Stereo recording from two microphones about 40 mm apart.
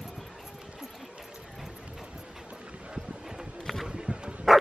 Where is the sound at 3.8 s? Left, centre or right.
Right.